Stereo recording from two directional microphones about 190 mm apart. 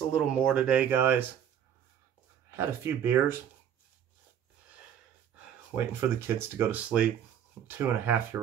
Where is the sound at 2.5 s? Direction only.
10° right (ahead or behind).